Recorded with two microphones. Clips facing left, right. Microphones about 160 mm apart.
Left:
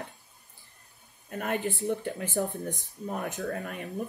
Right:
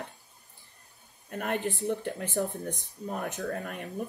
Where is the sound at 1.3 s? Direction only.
Centre (ahead or behind).